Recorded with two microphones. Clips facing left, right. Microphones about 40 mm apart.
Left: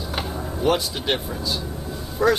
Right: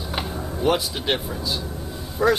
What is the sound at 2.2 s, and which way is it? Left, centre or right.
Speech, centre.